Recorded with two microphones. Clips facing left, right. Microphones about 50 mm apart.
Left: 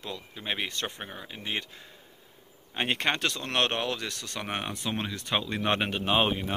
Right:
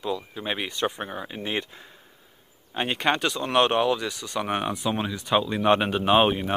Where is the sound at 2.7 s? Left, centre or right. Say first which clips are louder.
Right 4 dB; centre.